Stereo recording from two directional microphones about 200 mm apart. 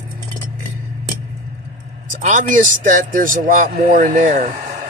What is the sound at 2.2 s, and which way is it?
Speech, 40° right (ahead or behind).